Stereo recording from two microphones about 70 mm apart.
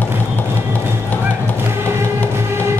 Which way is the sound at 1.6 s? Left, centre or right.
Right.